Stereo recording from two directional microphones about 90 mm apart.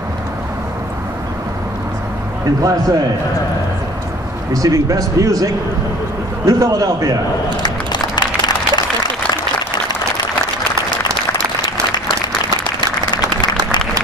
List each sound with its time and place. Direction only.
2.6 s a man's voice: 40° right (ahead or behind)
4.6 s a man's voice: 40° right (ahead or behind)
7.6 s run: 50° left (ahead or behind)